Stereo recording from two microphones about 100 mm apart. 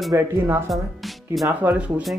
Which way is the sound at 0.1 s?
25° right (ahead or behind).